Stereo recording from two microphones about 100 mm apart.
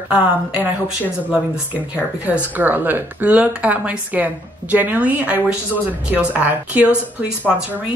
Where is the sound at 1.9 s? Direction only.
10° right (ahead or behind).